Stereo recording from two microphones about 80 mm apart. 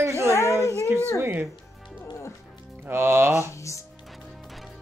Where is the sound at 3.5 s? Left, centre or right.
Left.